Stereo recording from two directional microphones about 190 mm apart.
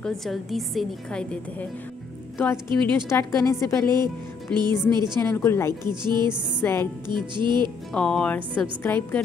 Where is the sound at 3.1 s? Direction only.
10° left (ahead or behind).